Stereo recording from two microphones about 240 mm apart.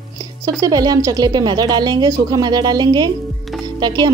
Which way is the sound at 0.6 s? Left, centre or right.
Centre.